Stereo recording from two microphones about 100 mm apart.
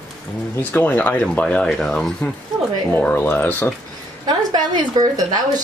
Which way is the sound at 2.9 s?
20° left (ahead or behind).